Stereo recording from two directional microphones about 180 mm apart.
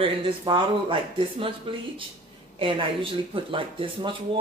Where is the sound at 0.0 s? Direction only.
30° right (ahead or behind).